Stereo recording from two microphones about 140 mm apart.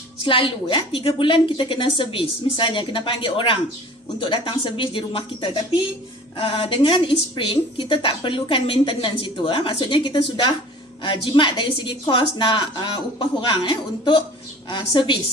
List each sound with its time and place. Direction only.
0.2 s a woman's voice: 40° left (ahead or behind)